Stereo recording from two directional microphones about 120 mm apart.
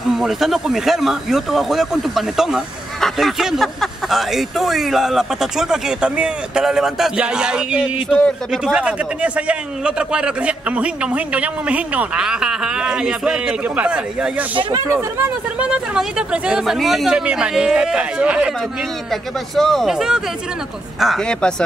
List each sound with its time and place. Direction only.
0.1 s a man's voice: 5° right (ahead or behind)
14.5 s speech: 45° right (ahead or behind)
14.9 s speech: 20° right (ahead or behind)
15.6 s a man's voice: 5° right (ahead or behind)
19.5 s speech: centre (ahead or behind)